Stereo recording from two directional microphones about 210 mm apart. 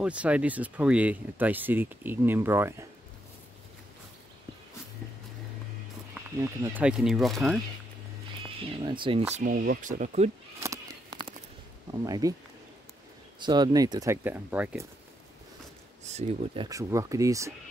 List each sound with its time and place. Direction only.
0.0 s speech: 5° right (ahead or behind)
6.6 s speech: 5° right (ahead or behind)
8.8 s speech: 25° right (ahead or behind)
9.3 s speech: 40° right (ahead or behind)
10.6 s a sound: 20° right (ahead or behind)
11.9 s speech: 15° right (ahead or behind)
13.4 s speech: 20° right (ahead or behind)
16.0 s speech: 30° right (ahead or behind)
16.6 s speech: 15° right (ahead or behind)